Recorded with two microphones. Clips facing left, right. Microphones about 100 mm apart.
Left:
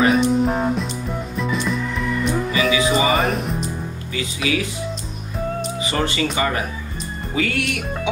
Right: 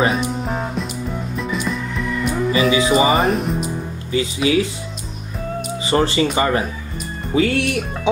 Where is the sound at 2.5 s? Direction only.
35° right (ahead or behind).